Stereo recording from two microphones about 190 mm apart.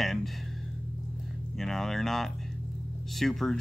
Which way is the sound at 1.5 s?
Centre (ahead or behind).